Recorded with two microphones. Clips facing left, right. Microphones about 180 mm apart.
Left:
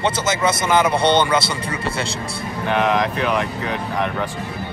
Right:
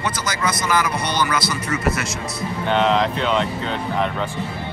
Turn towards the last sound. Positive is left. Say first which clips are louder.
# even
turn(degrees=10)  # may be behind; listen again after turning